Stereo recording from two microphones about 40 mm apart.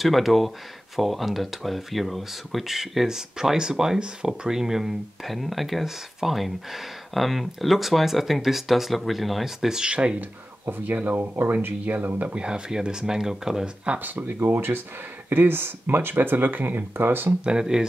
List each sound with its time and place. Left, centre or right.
0.0 s speech: centre
3.1 s speech: centre
9.8 s speech: right
10.9 s speech: right
11.1 s speech: right
11.8 s speech: right
12.4 s speech: right
13.9 s speech: right
14.4 s speech: right
17.5 s speech: centre